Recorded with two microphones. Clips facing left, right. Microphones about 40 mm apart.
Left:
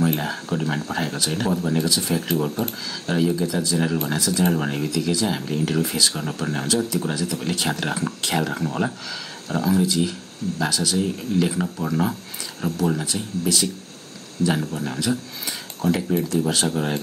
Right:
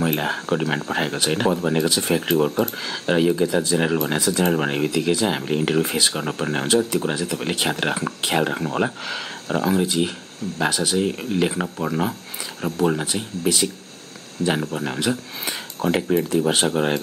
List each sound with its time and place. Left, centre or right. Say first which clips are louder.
0.0 s speech: right 1 dB; right
9.0 s speech: right 4 dB; right; by 12.1 s centre
12.7 s speech: right 3 dB; right
14.7 s speech: right 1 dB; right